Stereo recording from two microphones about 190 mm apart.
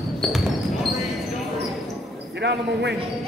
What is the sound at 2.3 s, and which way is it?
Speech, 65° right (ahead or behind).